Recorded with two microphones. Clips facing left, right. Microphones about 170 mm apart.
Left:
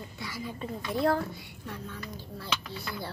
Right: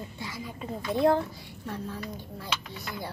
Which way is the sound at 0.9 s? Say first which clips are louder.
Right 4 dB; 20° right (ahead or behind).